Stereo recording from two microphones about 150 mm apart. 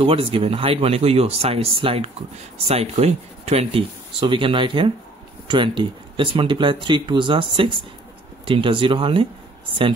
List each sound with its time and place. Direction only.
0.0 s speech: 40° right (ahead or behind)